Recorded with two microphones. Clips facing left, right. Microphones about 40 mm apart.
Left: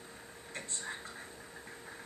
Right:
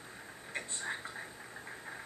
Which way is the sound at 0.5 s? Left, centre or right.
Centre.